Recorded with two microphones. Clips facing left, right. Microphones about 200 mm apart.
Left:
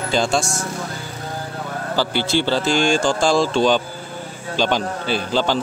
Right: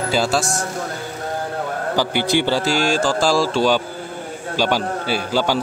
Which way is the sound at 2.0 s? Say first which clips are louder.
Right 1 dB; 15° right (ahead or behind).